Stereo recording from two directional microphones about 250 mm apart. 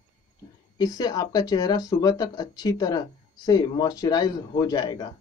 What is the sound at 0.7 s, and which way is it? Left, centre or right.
Speech, centre.